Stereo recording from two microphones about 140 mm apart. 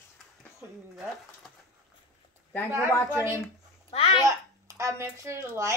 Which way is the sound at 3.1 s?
20° right (ahead or behind).